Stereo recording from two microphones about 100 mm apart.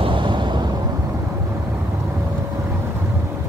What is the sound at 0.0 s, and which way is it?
Vehicle, 55° right (ahead or behind).